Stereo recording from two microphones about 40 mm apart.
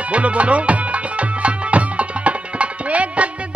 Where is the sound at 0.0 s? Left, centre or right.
Right.